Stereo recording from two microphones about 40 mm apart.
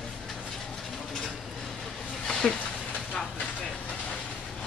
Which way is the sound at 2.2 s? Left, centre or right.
Centre.